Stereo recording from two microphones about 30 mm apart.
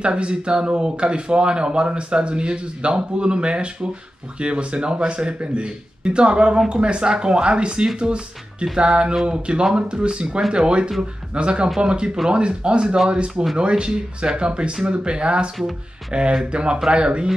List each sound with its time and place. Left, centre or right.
0.0 s speech: right